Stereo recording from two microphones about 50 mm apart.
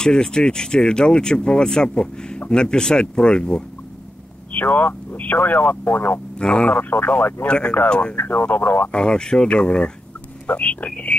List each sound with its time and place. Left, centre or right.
0.0 s speech: centre
4.5 s speech: left
6.3 s speech: left
7.4 s speech: centre
8.2 s speech: left
8.9 s speech: centre